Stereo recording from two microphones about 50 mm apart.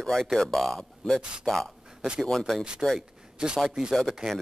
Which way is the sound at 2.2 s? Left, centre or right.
Centre.